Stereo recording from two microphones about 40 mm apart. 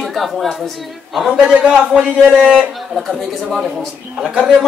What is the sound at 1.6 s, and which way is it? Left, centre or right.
Speech, right.